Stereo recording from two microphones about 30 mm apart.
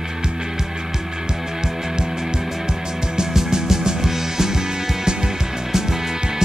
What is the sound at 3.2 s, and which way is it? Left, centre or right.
Music, right.